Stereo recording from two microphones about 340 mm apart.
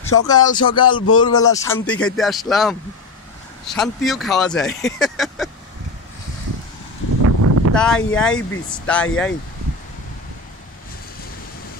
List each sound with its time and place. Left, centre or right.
0.0 s music: centre
0.5 s speech: centre
7.2 s a sound: right
7.7 s speech: centre